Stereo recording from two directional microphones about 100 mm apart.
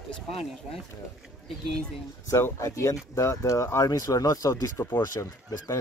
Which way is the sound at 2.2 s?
30° left (ahead or behind).